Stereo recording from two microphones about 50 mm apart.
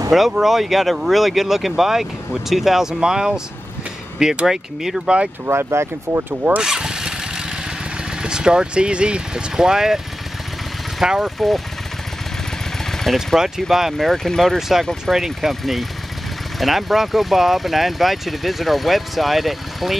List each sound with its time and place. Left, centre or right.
0.4 s speech: centre
5.5 s speech: right
6.6 s vehicle: centre
8.2 s speech: centre
12.9 s speech: centre
15.1 s speech: centre